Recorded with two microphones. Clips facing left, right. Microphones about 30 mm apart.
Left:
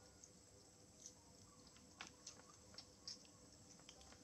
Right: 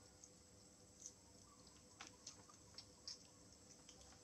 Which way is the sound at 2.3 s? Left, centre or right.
Centre.